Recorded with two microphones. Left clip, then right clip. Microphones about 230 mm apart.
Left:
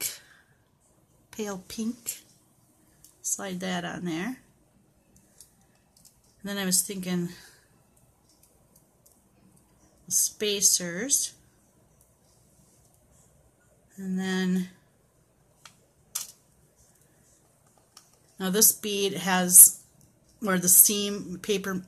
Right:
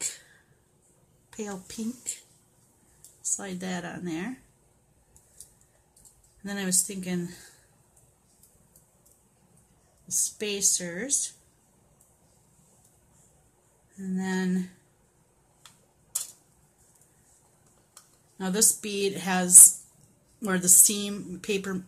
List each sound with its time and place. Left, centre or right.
1.3 s a woman's voice: centre
3.3 s a woman's voice: centre
6.4 s a woman's voice: centre
10.3 s a woman's voice: centre
13.9 s mantra: centre
18.4 s a woman's voice: centre